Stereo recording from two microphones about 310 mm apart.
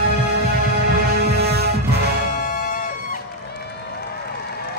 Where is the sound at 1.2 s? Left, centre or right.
Right.